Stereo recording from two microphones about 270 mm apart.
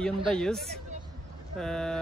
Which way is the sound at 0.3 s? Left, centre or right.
Centre.